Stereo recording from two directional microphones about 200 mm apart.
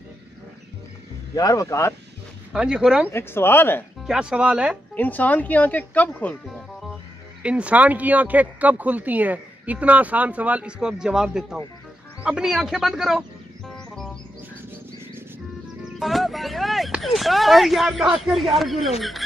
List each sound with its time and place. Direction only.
1.3 s speech: 15° left (ahead or behind)
2.5 s speech: 5° right (ahead or behind)
3.1 s speech: 10° left (ahead or behind)
4.0 s speech: 5° right (ahead or behind)
4.9 s speech: 10° left (ahead or behind)
13.7 s music: 5° left (ahead or behind)
15.8 s speech: centre (ahead or behind)